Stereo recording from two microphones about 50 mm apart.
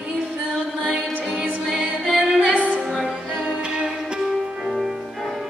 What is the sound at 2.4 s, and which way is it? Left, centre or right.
Music, right.